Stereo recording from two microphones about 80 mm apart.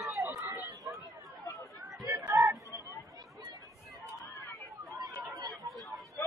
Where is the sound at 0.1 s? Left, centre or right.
Right.